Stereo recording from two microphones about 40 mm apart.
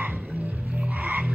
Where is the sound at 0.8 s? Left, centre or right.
Right.